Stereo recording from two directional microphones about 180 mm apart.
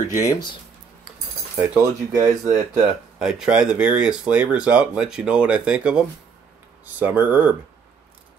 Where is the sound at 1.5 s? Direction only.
10° right (ahead or behind).